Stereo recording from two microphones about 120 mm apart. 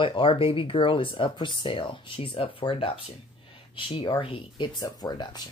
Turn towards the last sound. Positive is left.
turn(degrees=35)  # may be behind; listen again after turning